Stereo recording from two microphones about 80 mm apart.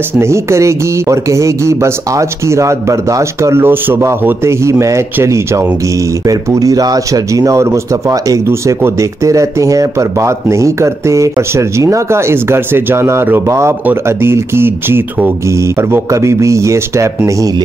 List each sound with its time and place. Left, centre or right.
0.2 s speech: right
4.5 s speech: right
6.2 s speech: right
15.6 s speech: right